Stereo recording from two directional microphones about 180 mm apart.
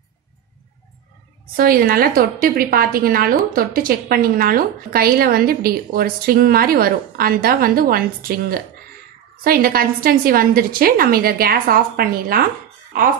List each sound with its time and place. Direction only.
1.6 s a woman's voice: 55° right (ahead or behind)